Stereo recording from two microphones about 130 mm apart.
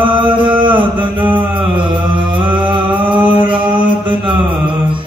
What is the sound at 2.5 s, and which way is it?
Music, 40° right (ahead or behind).